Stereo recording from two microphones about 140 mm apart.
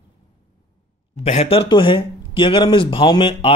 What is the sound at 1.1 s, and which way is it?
A man's voice, 50° left (ahead or behind).